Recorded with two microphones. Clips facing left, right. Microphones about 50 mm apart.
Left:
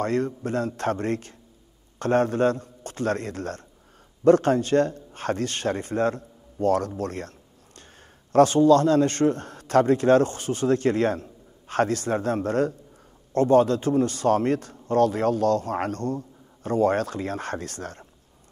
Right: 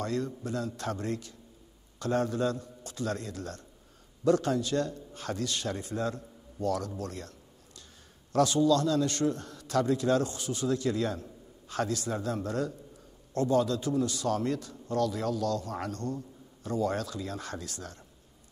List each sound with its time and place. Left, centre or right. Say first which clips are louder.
0.0 s a man's voice: left 7 dB; left
7.0 s a sound: left 8 dB; left
8.3 s a man's voice: left 8 dB; left